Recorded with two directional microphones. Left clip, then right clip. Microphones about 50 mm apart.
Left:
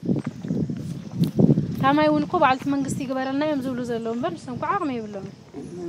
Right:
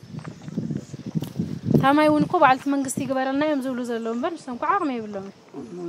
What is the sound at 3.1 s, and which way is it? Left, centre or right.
A woman's voice, right.